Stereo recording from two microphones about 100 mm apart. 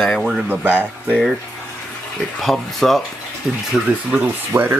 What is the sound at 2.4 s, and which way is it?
Speech, centre (ahead or behind).